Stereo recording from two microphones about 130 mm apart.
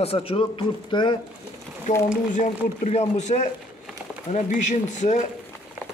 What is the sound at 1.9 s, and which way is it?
A man's voice, 70° left (ahead or behind).